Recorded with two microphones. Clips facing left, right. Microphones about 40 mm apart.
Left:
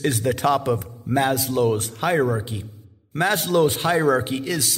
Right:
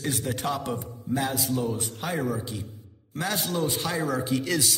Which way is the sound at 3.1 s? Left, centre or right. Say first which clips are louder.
Left 9 dB; left.